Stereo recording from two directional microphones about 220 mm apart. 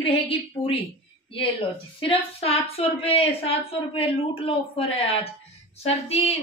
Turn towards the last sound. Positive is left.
turn(degrees=25)  # may be behind; listen again after turning